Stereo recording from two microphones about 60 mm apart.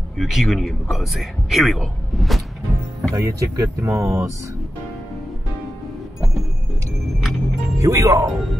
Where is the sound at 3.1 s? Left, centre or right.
Right.